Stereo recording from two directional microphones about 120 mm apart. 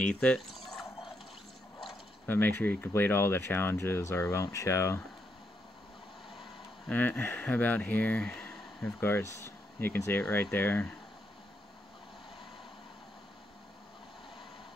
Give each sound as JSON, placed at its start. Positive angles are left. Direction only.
{"t": 0.0, "sound": "speech", "side_deg": 10}
{"t": 2.2, "sound": "speech", "side_deg": 15}
{"t": 6.9, "sound": "speech", "side_deg": 15}
{"t": 9.0, "sound": "speech", "side_deg": 20}